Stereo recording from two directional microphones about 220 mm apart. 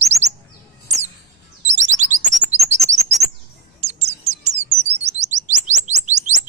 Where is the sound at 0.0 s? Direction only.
30° right (ahead or behind).